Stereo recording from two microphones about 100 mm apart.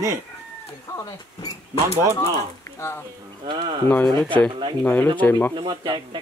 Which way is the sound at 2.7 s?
25° left (ahead or behind).